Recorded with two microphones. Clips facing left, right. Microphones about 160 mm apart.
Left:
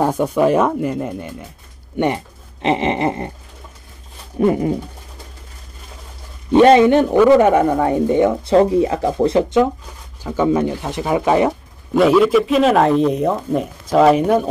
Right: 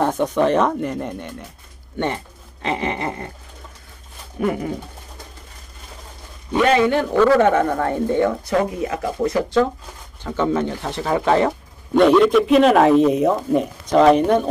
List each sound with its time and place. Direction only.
0.0 s speech: 10° left (ahead or behind)
2.0 s speech: 15° left (ahead or behind)
4.4 s speech: 25° left (ahead or behind)
6.5 s speech: 30° left (ahead or behind)
8.5 s speech: 30° left (ahead or behind)
10.2 s speech: 10° left (ahead or behind)